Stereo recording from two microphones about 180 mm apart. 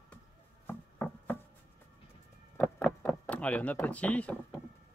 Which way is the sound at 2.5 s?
10° left (ahead or behind).